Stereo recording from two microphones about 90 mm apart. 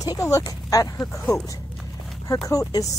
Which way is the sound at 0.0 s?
40° left (ahead or behind).